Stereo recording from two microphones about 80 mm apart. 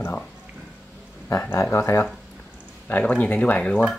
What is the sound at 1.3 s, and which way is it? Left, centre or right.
Speech, left.